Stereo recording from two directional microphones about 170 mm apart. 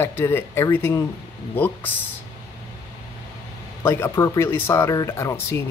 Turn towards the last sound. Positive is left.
turn(degrees=15)  # may be behind; listen again after turning